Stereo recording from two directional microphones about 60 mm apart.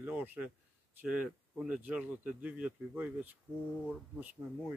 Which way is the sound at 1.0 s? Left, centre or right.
Right.